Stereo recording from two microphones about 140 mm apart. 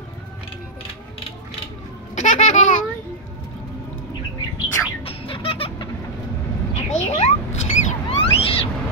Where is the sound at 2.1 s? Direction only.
55° left (ahead or behind).